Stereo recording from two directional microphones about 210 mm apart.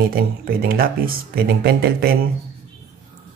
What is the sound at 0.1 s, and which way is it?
Speech, 45° right (ahead or behind).